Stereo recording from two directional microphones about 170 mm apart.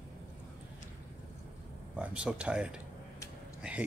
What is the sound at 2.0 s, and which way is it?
Speech, 5° right (ahead or behind).